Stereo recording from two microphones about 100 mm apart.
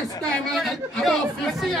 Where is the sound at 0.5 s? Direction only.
Centre (ahead or behind).